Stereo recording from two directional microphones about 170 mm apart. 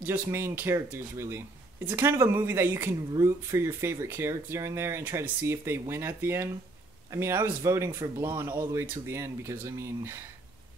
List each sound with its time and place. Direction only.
0.0 s speech: 15° right (ahead or behind)